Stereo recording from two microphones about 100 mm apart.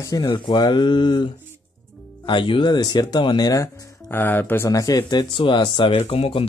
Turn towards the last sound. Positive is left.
turn(degrees=85)